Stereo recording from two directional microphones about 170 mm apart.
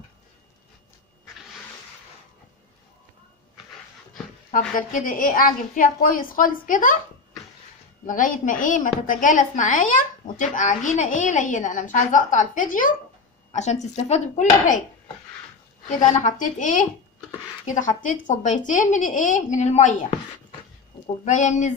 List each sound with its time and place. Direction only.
4.5 s a woman's voice: 45° left (ahead or behind)
8.1 s a woman's voice: 50° left (ahead or behind)
13.5 s a woman's voice: 40° left (ahead or behind)
16.0 s a woman's voice: 50° left (ahead or behind)
21.2 s a woman's voice: 45° left (ahead or behind)